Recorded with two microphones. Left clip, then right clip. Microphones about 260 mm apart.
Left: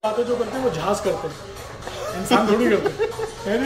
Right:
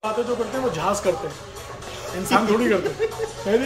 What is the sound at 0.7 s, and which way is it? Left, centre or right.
Speech, centre.